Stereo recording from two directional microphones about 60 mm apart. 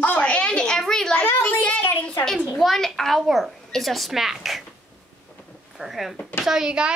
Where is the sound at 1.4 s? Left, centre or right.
Left.